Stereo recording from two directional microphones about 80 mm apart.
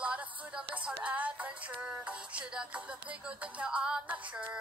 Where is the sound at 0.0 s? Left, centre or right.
Centre.